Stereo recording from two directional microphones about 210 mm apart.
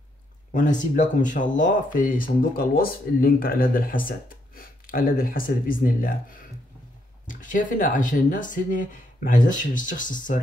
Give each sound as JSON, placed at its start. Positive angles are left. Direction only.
{"t": 0.5, "sound": "speech", "side_deg": 35}